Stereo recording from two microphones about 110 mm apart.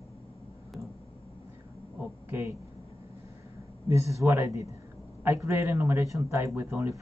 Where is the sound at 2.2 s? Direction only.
20° right (ahead or behind).